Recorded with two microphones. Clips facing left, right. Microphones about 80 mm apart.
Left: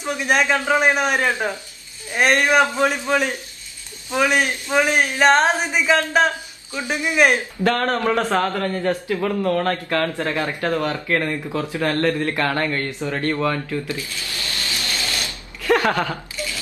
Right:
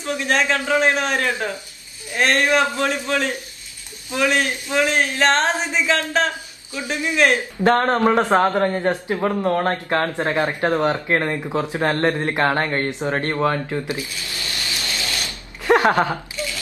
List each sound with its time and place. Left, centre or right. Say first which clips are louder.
0.0 s speech: left 1 dB; centre
7.6 s a man's voice: right 4 dB; right
15.2 s a sound: right 2 dB; right